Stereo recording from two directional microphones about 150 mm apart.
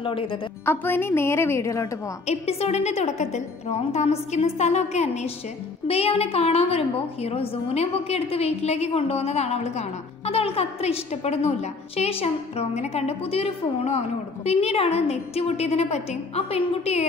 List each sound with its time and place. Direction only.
0.0 s a woman's voice: 35° left (ahead or behind)
0.7 s a woman's voice: 15° left (ahead or behind)
2.2 s a woman's voice: 45° left (ahead or behind)